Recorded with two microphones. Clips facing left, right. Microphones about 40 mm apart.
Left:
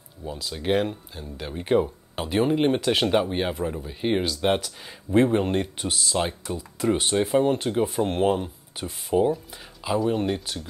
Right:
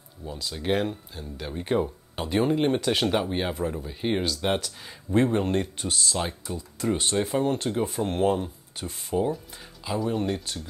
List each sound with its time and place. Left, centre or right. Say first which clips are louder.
0.4 s speech: left 2 dB; centre; by 9.3 s left
9.8 s speech: left 3 dB; centre